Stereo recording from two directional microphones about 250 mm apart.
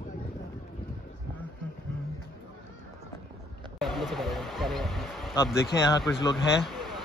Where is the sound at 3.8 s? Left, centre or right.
Centre.